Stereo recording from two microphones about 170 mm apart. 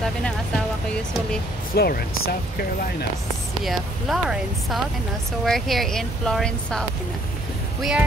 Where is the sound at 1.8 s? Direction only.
65° left (ahead or behind).